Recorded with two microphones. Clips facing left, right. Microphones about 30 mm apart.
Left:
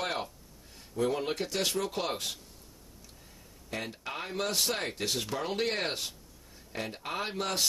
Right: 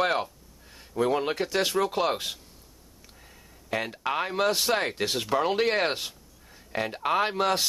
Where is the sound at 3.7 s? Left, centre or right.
Right.